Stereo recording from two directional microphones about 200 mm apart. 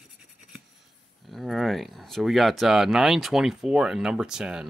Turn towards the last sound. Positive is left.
turn(degrees=-5)  # may be behind; listen again after turning